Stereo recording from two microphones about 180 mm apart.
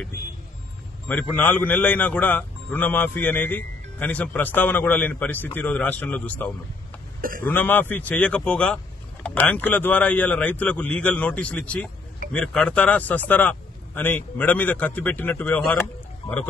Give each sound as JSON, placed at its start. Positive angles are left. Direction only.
{"t": 1.3, "sound": "a man's voice", "side_deg": 10}
{"t": 7.2, "sound": "speech", "side_deg": -50}
{"t": 7.4, "sound": "a man's voice", "side_deg": 10}